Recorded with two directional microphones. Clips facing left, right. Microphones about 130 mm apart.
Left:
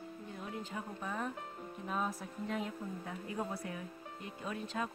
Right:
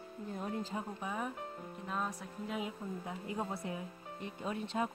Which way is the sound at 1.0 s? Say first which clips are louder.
Left 2 dB; 10° right (ahead or behind).